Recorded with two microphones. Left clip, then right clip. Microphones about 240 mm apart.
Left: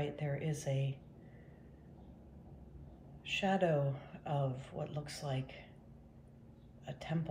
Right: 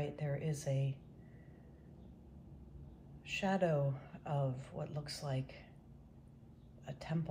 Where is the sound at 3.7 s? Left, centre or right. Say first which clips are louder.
Left 2 dB; centre.